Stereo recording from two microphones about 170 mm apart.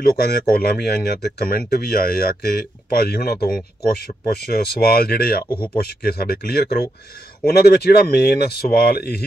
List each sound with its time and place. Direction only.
0.0 s speech: 65° left (ahead or behind)